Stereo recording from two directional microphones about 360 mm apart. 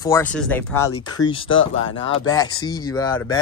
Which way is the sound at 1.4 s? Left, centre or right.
Left.